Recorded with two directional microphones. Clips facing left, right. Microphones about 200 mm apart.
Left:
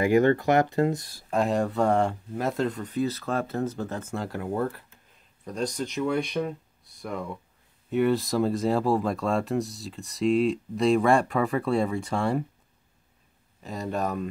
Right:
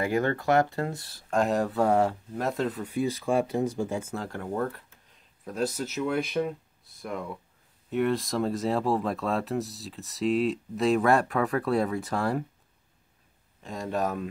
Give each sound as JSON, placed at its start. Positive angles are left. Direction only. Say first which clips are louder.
{"t": 0.0, "sound": "speech", "louder": "left 6 dB", "side_deg": 20}
{"t": 1.3, "sound": "speech", "louder": "left 1 dB", "side_deg": 0}
{"t": 5.4, "sound": "speech", "louder": "even", "side_deg": -5}
{"t": 13.6, "sound": "speech", "louder": "even", "side_deg": 0}